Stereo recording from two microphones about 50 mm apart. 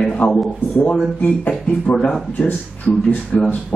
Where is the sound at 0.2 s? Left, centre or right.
Left.